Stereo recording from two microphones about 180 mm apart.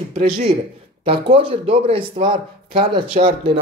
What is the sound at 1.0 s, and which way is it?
Speech, 30° right (ahead or behind).